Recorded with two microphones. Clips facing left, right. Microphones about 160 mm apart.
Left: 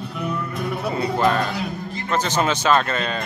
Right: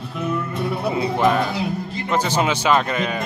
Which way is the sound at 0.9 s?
5° right (ahead or behind).